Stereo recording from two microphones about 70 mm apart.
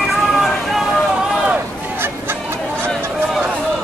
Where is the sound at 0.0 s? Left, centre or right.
Centre.